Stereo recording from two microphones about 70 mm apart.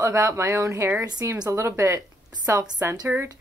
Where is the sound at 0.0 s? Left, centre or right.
Right.